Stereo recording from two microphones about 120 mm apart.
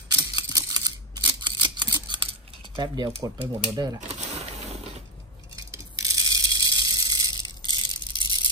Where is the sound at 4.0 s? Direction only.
70° right (ahead or behind).